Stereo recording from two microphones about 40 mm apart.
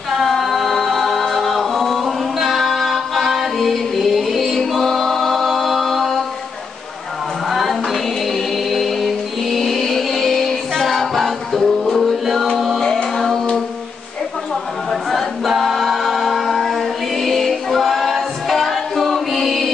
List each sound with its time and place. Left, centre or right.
0.1 s a capella: centre
7.4 s choir: centre
12.8 s music: centre
13.1 s music: centre
14.9 s a capella: centre